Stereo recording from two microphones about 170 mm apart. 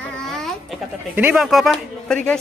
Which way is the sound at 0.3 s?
Centre (ahead or behind).